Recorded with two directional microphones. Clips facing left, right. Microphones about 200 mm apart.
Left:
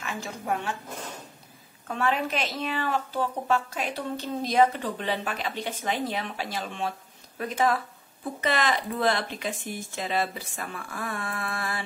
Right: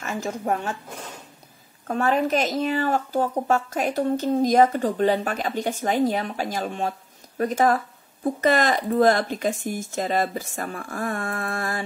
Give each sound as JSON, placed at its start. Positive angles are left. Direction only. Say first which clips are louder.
{"t": 0.0, "sound": "speech", "louder": "right 7 dB", "side_deg": -45}
{"t": 1.9, "sound": "speech", "louder": "right 6 dB", "side_deg": -45}